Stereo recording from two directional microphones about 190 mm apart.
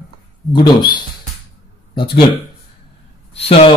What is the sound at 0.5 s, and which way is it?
Speech, 25° left (ahead or behind).